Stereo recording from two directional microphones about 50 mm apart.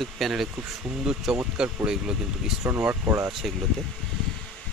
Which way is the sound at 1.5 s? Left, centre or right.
Centre.